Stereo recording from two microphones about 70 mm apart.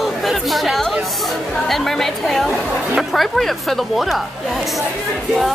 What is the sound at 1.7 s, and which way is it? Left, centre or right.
Speech, centre.